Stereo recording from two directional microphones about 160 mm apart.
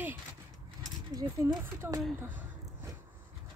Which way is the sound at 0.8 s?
20° right (ahead or behind).